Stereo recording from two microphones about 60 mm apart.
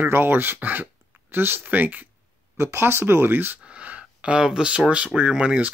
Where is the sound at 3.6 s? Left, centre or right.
Centre.